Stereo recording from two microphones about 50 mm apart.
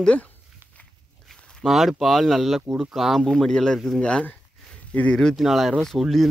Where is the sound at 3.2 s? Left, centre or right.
Centre.